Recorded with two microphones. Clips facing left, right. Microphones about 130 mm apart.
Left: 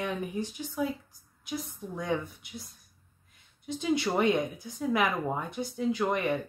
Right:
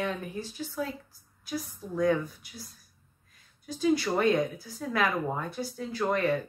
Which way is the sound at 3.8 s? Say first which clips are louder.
Right 2 dB; 20° left (ahead or behind).